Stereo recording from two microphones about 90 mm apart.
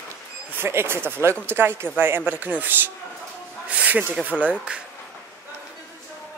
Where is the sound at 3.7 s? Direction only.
15° right (ahead or behind).